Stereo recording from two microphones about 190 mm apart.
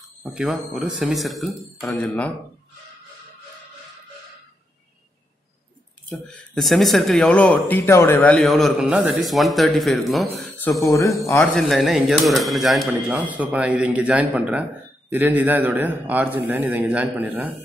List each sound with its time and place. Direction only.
0.2 s speech: centre (ahead or behind)
6.0 s speech: 5° left (ahead or behind)
10.9 s speech: 15° left (ahead or behind)
11.3 s a man's voice: centre (ahead or behind)